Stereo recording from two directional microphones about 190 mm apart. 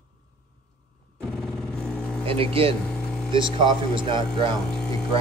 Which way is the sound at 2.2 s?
30° right (ahead or behind).